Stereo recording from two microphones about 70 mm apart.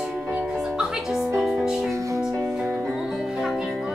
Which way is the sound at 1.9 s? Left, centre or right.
Right.